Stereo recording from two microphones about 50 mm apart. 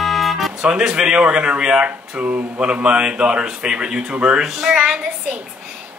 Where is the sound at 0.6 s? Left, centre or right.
Centre.